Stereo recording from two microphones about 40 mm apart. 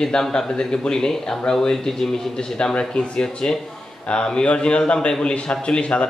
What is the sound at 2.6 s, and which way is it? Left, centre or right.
Speech, left.